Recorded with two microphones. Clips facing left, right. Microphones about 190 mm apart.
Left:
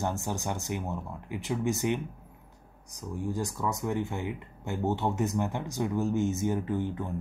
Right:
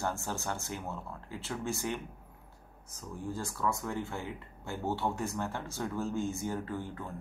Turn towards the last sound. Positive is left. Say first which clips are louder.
# left 7 dB
turn(degrees=20)  # may be behind; listen again after turning